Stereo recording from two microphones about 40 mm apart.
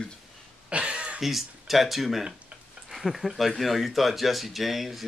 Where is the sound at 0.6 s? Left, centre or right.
Right.